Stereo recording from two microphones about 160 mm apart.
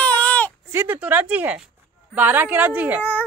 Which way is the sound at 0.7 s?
15° right (ahead or behind).